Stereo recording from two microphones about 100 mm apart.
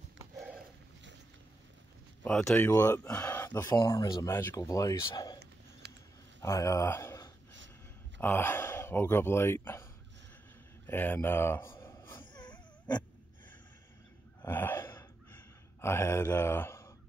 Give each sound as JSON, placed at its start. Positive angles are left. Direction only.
{"t": 2.2, "sound": "speech", "side_deg": 10}
{"t": 6.4, "sound": "speech", "side_deg": 30}
{"t": 10.9, "sound": "speech", "side_deg": 20}
{"t": 12.4, "sound": "dog", "side_deg": 45}
{"t": 14.4, "sound": "gasp", "side_deg": 20}
{"t": 15.3, "sound": "a sound", "side_deg": 25}